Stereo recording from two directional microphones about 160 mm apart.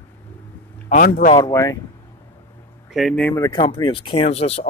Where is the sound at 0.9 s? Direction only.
60° left (ahead or behind).